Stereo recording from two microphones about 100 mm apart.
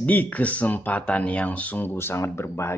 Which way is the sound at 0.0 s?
15° left (ahead or behind).